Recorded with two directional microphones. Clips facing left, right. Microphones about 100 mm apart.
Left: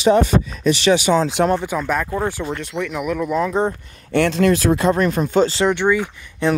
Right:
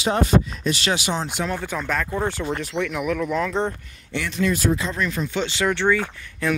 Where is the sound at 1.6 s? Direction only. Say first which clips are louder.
Left 4 dB; 10° left (ahead or behind).